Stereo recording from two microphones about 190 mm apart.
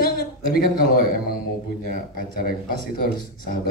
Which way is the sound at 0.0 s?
50° left (ahead or behind).